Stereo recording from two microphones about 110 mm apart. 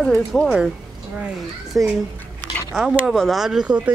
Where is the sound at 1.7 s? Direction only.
Centre (ahead or behind).